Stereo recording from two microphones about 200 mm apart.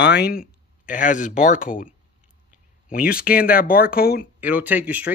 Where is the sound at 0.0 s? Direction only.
55° left (ahead or behind).